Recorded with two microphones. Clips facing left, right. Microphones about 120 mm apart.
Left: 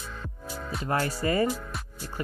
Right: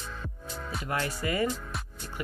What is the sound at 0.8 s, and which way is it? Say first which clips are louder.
Speech: left 5 dB; 40° left (ahead or behind).